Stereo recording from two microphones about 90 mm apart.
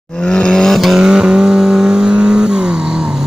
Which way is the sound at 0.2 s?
10° left (ahead or behind).